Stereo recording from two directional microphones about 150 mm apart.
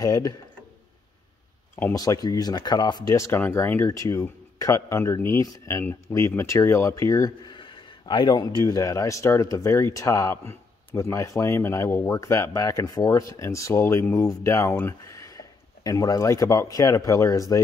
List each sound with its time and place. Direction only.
0.0 s speech: 25° left (ahead or behind)
1.8 s speech: 20° left (ahead or behind)